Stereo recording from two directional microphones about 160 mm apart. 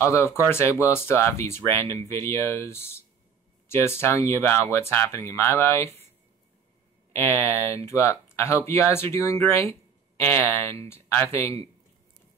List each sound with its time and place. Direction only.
0.0 s speech: 15° left (ahead or behind)
7.1 s speech: 15° left (ahead or behind)